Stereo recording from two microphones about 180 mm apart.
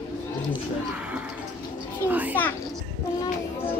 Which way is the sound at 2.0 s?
10° right (ahead or behind).